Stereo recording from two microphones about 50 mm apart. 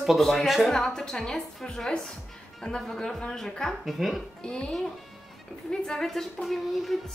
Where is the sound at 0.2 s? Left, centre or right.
Centre.